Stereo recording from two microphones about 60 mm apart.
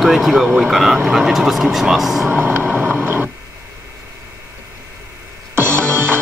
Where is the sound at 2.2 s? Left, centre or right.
Right.